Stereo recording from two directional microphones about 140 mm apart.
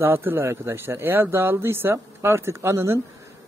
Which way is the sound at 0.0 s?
15° right (ahead or behind).